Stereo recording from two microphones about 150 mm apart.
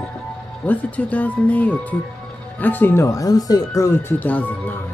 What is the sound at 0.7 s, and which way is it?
Speech, 10° left (ahead or behind).